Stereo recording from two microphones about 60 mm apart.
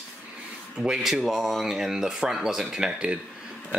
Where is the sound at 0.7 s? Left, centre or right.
Centre.